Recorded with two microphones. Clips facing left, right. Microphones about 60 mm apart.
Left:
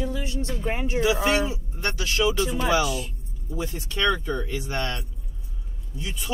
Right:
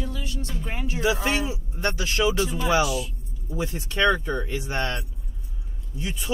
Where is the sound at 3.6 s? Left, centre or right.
Right.